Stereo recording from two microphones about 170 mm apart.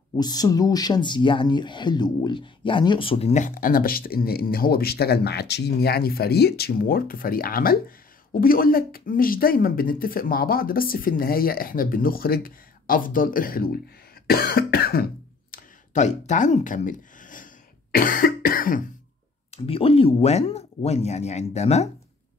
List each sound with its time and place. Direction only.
0.2 s speech: 20° left (ahead or behind); by 13.7 s 60° left (ahead or behind)
14.2 s cough: 65° left (ahead or behind)
15.5 s a sound: 45° left (ahead or behind)
17.9 s cough: 55° left (ahead or behind)
19.5 s speech: 35° left (ahead or behind)